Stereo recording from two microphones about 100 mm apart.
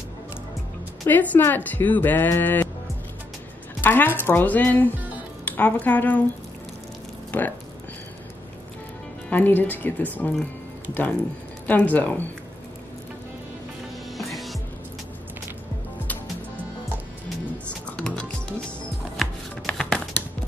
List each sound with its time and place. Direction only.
1.0 s speech: 20° left (ahead or behind)
3.8 s speech: 20° left (ahead or behind)
4.9 s music: 15° right (ahead or behind)
5.4 s a woman's voice: 15° left (ahead or behind)
7.2 s a sound: 20° left (ahead or behind)
9.3 s speech: 20° left (ahead or behind)
11.6 s speech: 15° left (ahead or behind)
14.1 s music: centre (ahead or behind)
17.9 s music: 10° left (ahead or behind)
19.1 s chopping: 5° left (ahead or behind)